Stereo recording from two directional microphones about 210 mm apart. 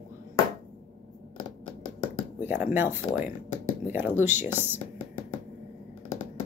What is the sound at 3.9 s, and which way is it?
Speech, 10° right (ahead or behind).